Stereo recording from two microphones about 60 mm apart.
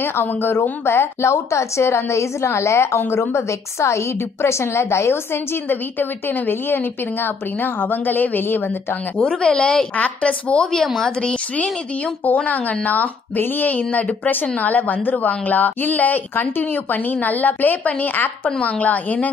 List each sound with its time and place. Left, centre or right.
0.0 s speech: left
0.8 s a woman's voice: left
9.2 s speech: centre
11.6 s speech: left